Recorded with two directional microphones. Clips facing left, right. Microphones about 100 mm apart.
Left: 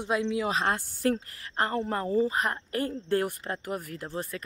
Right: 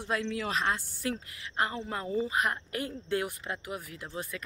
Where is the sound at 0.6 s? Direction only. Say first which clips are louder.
Left 5 dB; 45° left (ahead or behind).